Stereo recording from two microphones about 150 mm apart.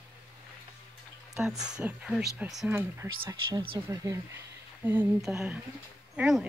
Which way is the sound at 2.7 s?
15° right (ahead or behind).